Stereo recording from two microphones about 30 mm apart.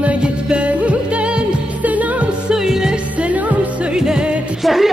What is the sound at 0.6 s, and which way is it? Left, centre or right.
Music, right.